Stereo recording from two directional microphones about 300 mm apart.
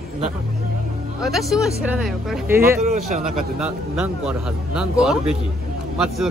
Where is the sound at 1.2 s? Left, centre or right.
Centre.